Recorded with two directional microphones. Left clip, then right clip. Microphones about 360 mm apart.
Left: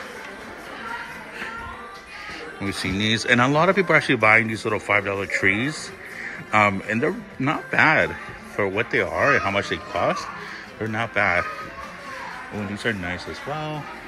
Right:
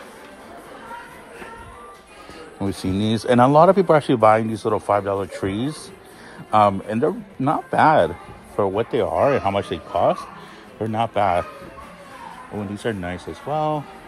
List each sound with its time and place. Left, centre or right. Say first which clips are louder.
2.8 s speech: left 3 dB; centre
6.5 s a man's voice: right 3 dB; centre
12.8 s speech: left 1 dB; centre